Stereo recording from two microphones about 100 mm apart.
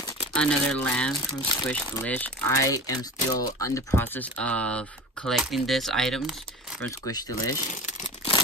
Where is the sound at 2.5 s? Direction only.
35° left (ahead or behind); by 6.2 s 5° left (ahead or behind).